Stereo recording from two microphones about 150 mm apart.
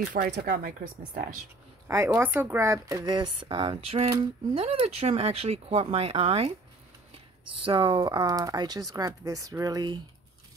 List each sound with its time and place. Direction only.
0.4 s speech: 80° right
1.9 s speech: 15° right (ahead or behind); by 6.5 s 40° right (ahead or behind)
7.6 s speech: 35° right (ahead or behind)